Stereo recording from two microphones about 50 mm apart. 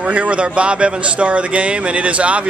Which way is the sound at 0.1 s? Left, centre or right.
Right.